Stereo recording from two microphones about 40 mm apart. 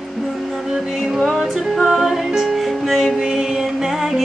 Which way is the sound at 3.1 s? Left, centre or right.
Centre.